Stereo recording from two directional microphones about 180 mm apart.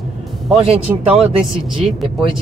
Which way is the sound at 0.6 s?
35° right (ahead or behind).